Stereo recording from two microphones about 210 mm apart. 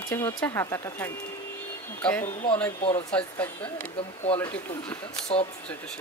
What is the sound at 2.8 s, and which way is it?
Speech, 25° left (ahead or behind).